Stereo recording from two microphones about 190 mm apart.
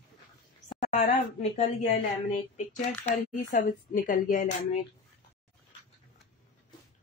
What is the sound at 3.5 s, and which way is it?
A woman's voice, 45° left (ahead or behind).